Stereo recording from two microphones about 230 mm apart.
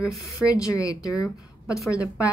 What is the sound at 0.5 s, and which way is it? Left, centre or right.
A woman's voice, centre.